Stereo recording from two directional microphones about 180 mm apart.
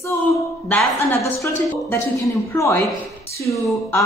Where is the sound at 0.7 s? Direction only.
15° left (ahead or behind).